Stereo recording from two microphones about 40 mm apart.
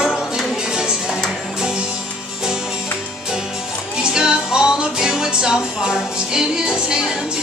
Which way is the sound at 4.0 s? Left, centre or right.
Centre.